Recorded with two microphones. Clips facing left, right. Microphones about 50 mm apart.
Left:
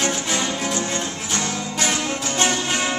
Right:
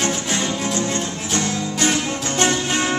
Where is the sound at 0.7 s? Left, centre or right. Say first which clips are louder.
Right 2 dB; left.